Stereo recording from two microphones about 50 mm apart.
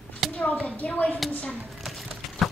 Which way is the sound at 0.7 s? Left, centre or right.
Left.